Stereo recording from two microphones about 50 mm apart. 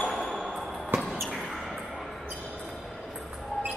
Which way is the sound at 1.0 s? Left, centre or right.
Centre.